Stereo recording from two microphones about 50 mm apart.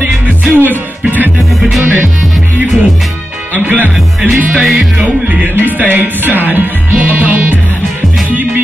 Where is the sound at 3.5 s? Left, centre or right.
Right.